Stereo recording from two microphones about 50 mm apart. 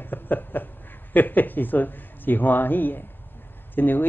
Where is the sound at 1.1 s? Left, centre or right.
Left.